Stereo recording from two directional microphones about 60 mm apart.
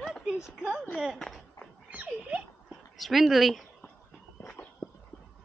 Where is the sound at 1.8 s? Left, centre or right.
Right.